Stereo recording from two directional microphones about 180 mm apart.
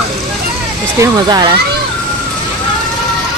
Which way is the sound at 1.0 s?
20° right (ahead or behind).